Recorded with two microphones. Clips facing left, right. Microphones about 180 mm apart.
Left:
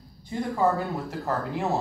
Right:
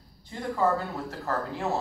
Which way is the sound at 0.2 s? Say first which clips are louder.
Left 2 dB; 15° left (ahead or behind).